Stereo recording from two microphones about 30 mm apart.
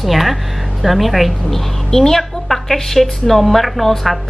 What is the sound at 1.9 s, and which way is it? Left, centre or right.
Speech, centre.